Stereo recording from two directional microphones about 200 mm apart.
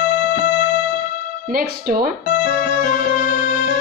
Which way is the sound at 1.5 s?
45° right (ahead or behind).